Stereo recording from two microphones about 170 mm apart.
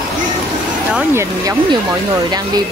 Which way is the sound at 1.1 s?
15° right (ahead or behind).